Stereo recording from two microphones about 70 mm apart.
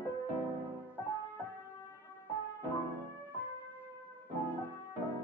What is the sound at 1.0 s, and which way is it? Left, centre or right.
Music, left.